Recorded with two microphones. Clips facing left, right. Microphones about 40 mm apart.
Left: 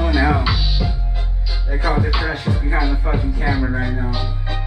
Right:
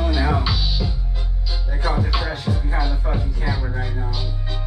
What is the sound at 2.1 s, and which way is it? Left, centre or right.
Music, centre.